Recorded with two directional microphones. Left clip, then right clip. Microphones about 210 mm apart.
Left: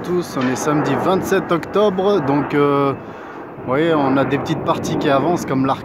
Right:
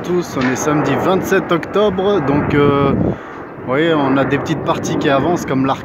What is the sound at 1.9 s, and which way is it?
Speech, 40° left (ahead or behind).